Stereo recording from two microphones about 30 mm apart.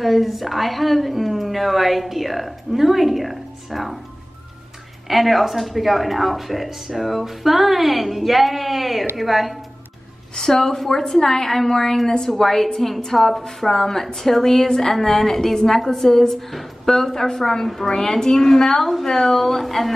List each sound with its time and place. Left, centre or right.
0.0 s speech: centre
5.0 s speech: centre
10.3 s a woman's voice: centre